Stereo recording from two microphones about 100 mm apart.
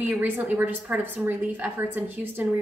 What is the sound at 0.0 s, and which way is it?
A woman's voice, 15° right (ahead or behind).